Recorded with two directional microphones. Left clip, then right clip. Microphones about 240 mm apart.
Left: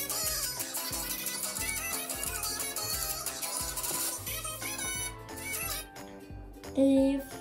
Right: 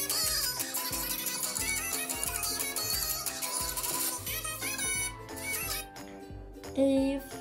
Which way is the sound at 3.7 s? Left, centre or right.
Centre.